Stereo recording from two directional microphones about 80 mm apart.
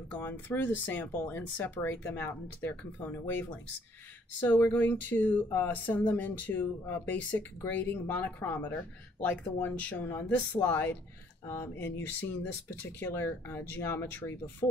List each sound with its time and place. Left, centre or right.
0.1 s speech: left